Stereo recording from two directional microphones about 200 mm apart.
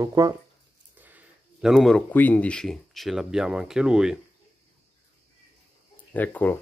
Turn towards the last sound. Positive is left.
turn(degrees=10)  # may be behind; listen again after turning